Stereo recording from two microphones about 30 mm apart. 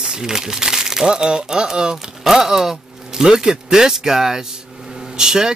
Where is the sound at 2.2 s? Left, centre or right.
Centre.